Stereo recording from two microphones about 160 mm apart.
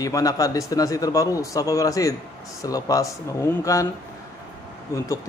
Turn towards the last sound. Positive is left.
turn(degrees=20)  # may be behind; listen again after turning